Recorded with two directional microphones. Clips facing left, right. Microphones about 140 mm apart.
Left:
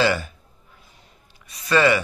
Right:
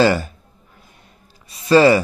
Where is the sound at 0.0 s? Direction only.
40° right (ahead or behind).